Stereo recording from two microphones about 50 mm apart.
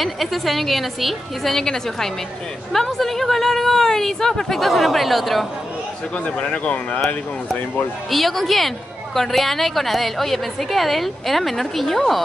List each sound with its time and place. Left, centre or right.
0.0 s a woman's voice: centre
6.1 s speech: left
8.1 s a woman's voice: centre